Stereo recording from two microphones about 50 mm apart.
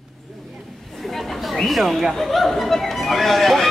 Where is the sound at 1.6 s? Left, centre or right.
Centre.